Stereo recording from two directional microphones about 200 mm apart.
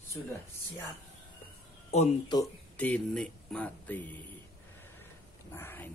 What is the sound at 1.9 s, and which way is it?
Speech, 35° left (ahead or behind).